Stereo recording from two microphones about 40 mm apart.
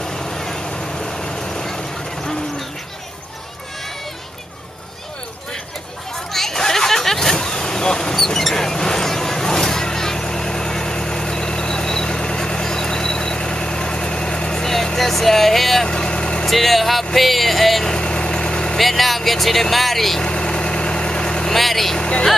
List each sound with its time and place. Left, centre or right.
0.0 s vehicle: centre
6.1 s vehicle: centre
15.9 s vehicle: left
16.4 s speech: centre
17.8 s vehicle: left
18.8 s vehicle: centre
20.2 s vehicle: centre
21.5 s vehicle: centre